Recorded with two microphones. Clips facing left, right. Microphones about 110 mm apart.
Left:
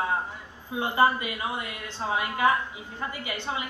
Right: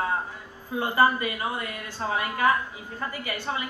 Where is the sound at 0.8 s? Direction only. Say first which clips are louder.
Right 1 dB; 20° left (ahead or behind).